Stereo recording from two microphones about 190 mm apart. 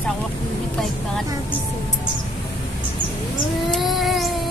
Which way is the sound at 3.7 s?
Centre (ahead or behind).